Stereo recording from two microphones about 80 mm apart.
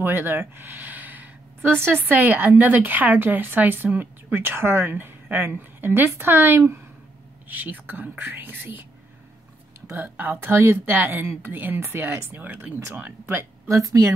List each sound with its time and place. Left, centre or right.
0.0 s speech: right
9.8 s speech: right
12.4 s speech: right
13.7 s speech: right